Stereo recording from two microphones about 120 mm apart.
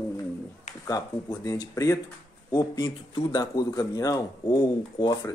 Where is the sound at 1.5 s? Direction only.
30° left (ahead or behind).